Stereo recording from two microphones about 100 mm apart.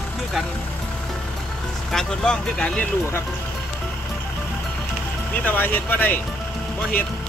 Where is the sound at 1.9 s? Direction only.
5° left (ahead or behind).